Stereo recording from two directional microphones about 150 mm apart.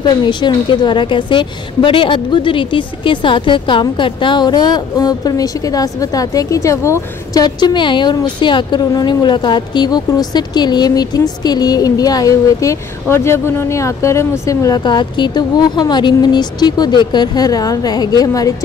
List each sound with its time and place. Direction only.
0.1 s a woman's voice: 30° left (ahead or behind)